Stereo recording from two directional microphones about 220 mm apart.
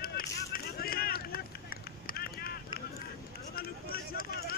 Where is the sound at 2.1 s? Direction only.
45° left (ahead or behind).